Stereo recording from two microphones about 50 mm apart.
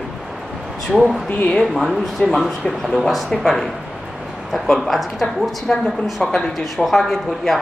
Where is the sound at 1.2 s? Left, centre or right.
Left.